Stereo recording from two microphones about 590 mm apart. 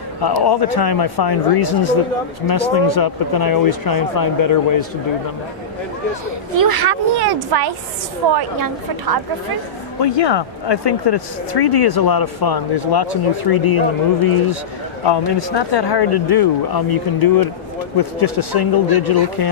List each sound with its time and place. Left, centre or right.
0.2 s speech: left
6.6 s speech: right
10.0 s speech: left